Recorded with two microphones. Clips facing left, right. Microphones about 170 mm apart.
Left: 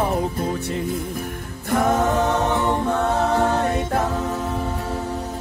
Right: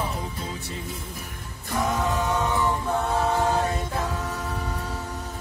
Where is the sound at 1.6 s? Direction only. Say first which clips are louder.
Left 7 dB; 60° left (ahead or behind).